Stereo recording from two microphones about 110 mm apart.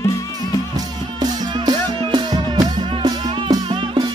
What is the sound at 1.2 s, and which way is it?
Music, 40° right (ahead or behind).